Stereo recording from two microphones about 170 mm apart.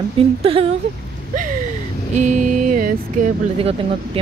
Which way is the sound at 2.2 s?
45° right (ahead or behind).